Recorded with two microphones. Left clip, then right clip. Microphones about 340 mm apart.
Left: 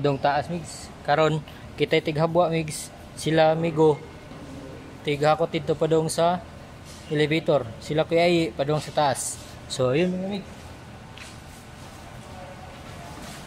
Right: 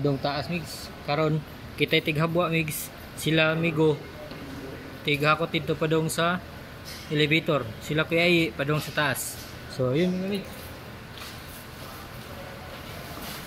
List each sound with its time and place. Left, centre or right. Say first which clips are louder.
0.0 s speech: left 5 dB; left
5.0 s speech: left 2 dB; centre
9.7 s speech: left 4 dB; left